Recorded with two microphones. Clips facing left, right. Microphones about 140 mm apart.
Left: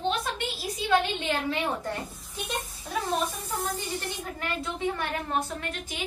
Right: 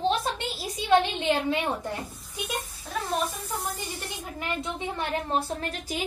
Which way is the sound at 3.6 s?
10° right (ahead or behind).